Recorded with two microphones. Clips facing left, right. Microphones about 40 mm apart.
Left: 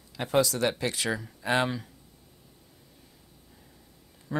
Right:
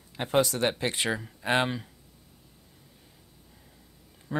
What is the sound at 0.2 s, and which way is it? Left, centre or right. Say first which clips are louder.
Speech: even; right.